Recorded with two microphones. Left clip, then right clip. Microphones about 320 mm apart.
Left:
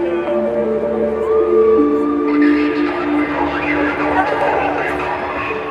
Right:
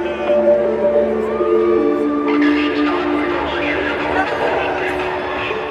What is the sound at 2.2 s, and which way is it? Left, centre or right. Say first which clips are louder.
Music: left 1 dB; centre.